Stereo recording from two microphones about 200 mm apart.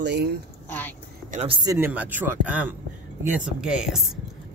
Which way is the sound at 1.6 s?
20° right (ahead or behind).